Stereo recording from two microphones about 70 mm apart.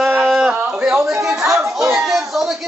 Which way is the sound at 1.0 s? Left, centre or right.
Right.